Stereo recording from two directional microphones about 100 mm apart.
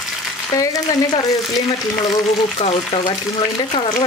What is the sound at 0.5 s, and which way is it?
Speech, 30° left (ahead or behind).